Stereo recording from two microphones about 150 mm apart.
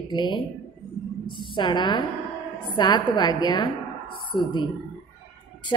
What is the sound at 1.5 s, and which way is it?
A woman's voice, 30° left (ahead or behind).